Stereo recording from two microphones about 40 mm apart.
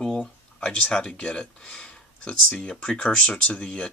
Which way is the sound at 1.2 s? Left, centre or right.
Left.